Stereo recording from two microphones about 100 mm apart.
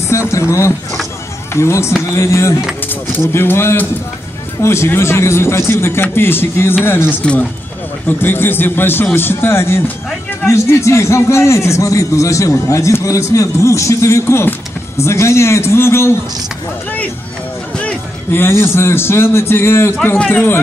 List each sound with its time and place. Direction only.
0.1 s a man's voice: 30° left (ahead or behind)
18.3 s a man's voice: 25° left (ahead or behind)